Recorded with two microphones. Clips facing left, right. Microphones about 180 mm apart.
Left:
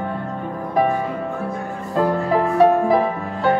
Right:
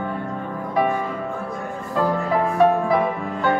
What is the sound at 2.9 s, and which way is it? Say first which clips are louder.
Music: left 2 dB; 35° left (ahead or behind).